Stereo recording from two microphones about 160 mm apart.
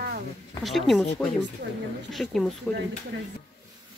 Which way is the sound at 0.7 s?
Centre (ahead or behind).